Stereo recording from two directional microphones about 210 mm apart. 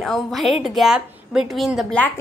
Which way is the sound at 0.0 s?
Centre (ahead or behind).